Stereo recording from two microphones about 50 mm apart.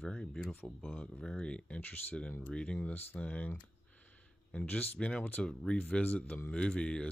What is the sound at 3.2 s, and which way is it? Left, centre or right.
Speech, left.